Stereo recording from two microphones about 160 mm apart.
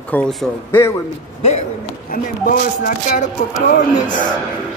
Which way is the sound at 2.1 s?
60° left (ahead or behind).